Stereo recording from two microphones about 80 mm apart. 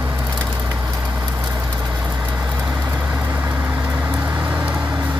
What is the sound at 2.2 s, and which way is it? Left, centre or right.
Vehicle, centre.